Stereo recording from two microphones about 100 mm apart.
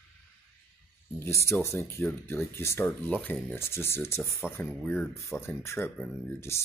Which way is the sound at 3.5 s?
25° left (ahead or behind).